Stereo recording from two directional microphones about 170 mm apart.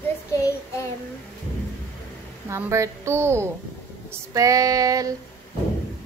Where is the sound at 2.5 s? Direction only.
15° right (ahead or behind).